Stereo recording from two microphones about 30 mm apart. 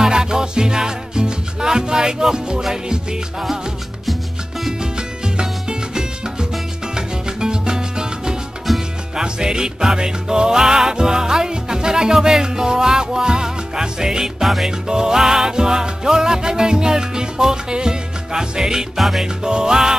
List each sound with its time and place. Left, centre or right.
0.0 s music: right
4.0 s music: centre
4.7 s music: right
8.7 s music: centre
9.1 s music: right
14.4 s music: centre
14.7 s music: right
18.9 s music: centre
19.2 s music: right